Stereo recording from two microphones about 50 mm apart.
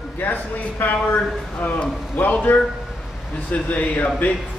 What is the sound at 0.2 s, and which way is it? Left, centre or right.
Speech, left.